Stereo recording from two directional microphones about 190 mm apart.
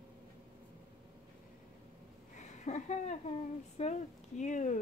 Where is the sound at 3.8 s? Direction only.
35° left (ahead or behind).